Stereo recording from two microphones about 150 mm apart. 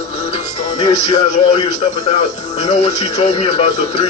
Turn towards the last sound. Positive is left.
turn(degrees=45)  # may be behind; listen again after turning